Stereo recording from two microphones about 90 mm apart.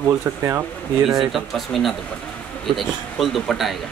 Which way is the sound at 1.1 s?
5° right (ahead or behind).